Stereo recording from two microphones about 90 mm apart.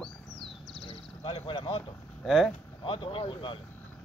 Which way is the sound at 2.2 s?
Centre (ahead or behind).